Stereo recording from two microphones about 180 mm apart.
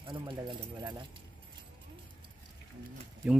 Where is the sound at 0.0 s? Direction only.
25° right (ahead or behind).